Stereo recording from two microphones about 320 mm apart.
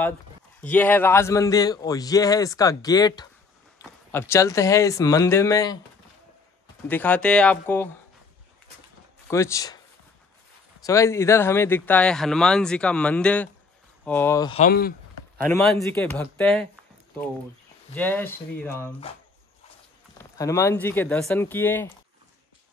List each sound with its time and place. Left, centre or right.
0.6 s a man's voice: centre
6.9 s speech: centre
9.3 s a man's voice: centre
10.8 s a man's voice: centre
14.7 s speech: left
15.3 s speech: centre
17.9 s a man's voice: centre
20.3 s a man's voice: centre